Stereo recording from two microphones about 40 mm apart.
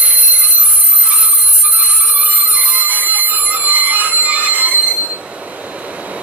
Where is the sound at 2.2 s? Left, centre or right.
Right.